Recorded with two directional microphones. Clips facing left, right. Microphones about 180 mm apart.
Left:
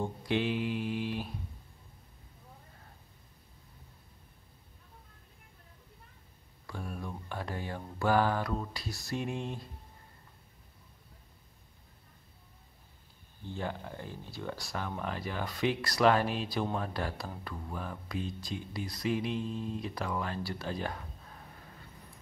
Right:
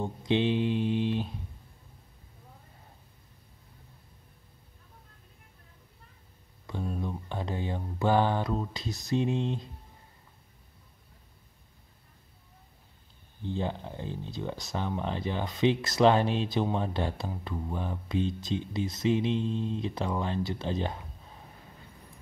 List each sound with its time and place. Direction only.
0.0 s mantra: 20° right (ahead or behind)
6.6 s speech: 20° right (ahead or behind)
13.4 s speech: 20° right (ahead or behind)